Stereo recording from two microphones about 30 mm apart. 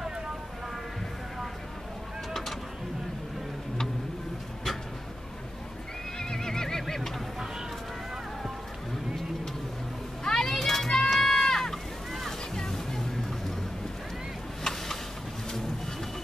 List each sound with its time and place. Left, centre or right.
6.1 s neigh: centre
10.2 s children playing: centre
12.1 s boat: centre
12.5 s music: centre
14.6 s a sound: centre